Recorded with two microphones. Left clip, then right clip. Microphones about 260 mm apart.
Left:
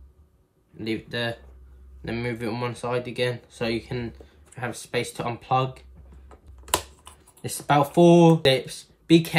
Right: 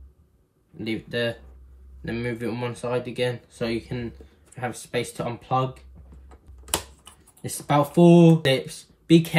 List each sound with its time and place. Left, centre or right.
2.0 s speech: centre
6.2 s computer keyboard: centre